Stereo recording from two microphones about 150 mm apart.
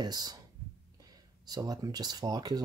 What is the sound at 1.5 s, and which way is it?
Speech, 25° right (ahead or behind).